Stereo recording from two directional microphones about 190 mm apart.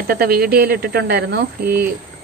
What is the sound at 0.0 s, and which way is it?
Speech, 50° right (ahead or behind).